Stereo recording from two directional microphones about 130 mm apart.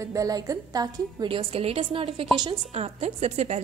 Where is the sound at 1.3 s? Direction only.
45° right (ahead or behind).